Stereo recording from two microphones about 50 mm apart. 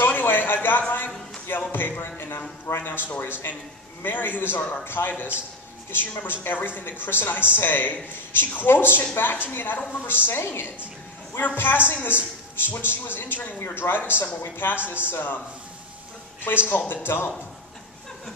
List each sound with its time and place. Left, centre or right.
0.0 s a sound: left
1.7 s speech: left
16.6 s speech: left